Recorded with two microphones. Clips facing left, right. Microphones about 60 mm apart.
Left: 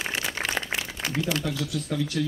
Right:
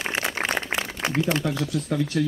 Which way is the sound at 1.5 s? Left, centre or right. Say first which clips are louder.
Right 4 dB; right.